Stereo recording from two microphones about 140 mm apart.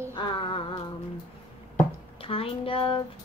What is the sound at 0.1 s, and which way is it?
Music, 35° left (ahead or behind).